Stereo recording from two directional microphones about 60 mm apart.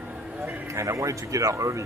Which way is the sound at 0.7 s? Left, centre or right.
Right.